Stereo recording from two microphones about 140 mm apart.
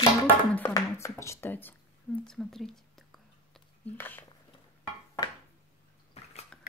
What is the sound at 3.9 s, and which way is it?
Speech, 15° left (ahead or behind).